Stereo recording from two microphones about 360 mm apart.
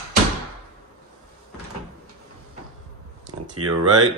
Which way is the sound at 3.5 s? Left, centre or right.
Right.